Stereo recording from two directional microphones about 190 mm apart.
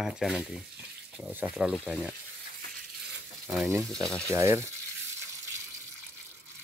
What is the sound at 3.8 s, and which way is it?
Speech, centre (ahead or behind).